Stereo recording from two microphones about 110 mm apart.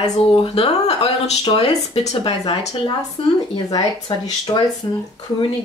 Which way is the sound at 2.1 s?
50° left (ahead or behind).